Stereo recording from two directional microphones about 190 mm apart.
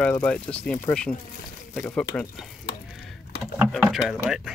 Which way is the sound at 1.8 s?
5° left (ahead or behind).